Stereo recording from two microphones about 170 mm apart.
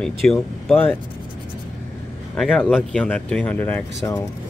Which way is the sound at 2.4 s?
Centre (ahead or behind).